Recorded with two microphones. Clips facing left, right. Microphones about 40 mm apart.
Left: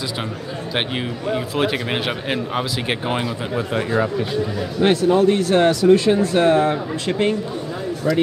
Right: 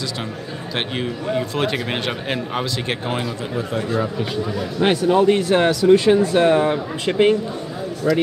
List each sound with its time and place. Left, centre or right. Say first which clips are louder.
0.7 s a man's voice: even; centre
3.5 s speech: left 2 dB; left
4.7 s speech: left 1 dB; centre
6.1 s a man's voice: right 1 dB; centre
8.0 s a man's voice: right 1 dB; centre